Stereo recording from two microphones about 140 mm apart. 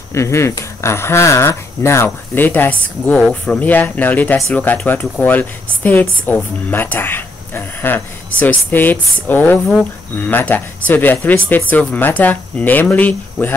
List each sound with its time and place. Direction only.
0.1 s speech: 20° left (ahead or behind)
3.1 s speech: 5° left (ahead or behind)